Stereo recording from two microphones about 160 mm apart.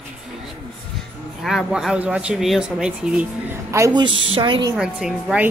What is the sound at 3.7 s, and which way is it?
A woman's voice, 20° right (ahead or behind).